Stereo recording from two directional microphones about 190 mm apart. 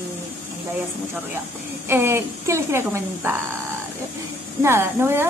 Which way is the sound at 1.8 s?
15° right (ahead or behind).